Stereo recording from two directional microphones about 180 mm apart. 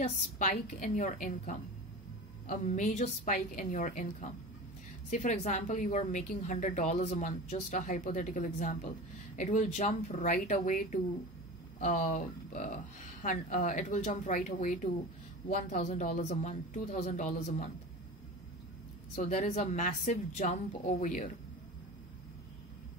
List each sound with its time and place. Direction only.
0.0 s a woman's voice: 45° left (ahead or behind)
19.1 s a woman's voice: 40° left (ahead or behind)